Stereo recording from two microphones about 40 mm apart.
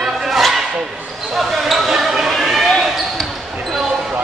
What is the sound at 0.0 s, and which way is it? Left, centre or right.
Music, centre.